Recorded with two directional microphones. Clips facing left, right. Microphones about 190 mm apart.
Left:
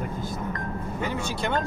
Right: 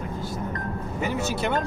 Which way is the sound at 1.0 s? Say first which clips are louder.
Right 3 dB; 5° right (ahead or behind).